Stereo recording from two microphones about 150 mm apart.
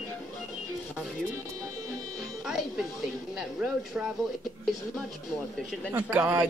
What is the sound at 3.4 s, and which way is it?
Speech, centre (ahead or behind).